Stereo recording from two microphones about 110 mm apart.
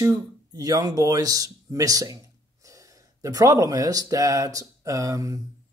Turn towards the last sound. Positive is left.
turn(degrees=-30)  # may be behind; listen again after turning